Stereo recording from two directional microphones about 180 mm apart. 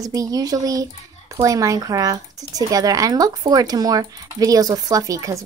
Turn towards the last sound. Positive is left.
turn(degrees=-20)  # may be behind; listen again after turning